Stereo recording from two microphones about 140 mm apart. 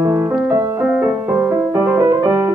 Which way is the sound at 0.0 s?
20° right (ahead or behind).